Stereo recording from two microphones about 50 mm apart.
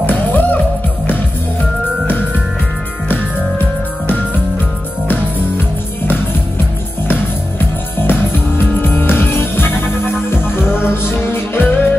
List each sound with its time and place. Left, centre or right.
0.3 s music: left
8.0 s music: left